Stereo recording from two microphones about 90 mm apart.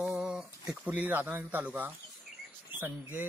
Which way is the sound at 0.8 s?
20° right (ahead or behind).